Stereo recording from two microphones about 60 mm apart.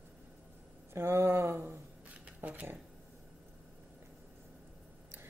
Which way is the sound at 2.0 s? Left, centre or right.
Right.